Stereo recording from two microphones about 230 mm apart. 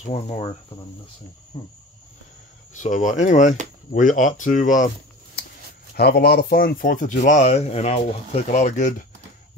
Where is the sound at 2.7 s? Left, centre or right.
Left.